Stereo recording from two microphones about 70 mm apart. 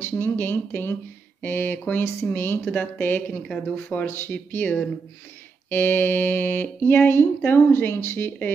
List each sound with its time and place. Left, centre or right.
0.0 s speech: left